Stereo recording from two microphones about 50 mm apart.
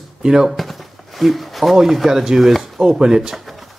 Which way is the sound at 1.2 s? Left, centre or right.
Centre.